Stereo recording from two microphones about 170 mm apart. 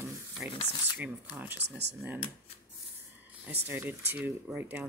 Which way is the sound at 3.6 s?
10° right (ahead or behind).